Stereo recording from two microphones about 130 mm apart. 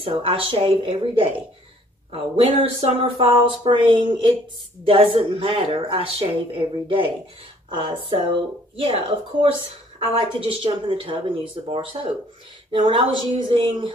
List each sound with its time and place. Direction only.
0.0 s speech: 45° right (ahead or behind)
7.7 s speech: 40° right (ahead or behind)